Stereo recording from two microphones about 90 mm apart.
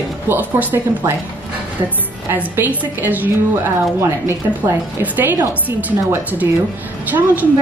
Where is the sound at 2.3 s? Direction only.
20° right (ahead or behind).